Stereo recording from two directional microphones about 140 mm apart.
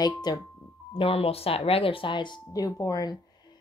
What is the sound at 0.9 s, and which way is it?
A woman's voice, 45° left (ahead or behind).